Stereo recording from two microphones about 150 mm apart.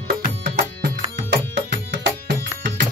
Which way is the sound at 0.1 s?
75° right (ahead or behind).